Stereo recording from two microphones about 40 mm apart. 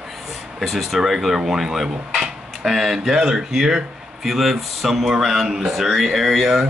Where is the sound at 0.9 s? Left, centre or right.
Centre.